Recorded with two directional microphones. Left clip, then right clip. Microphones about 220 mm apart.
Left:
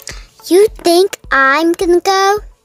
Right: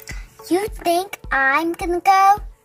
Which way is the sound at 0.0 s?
55° left (ahead or behind).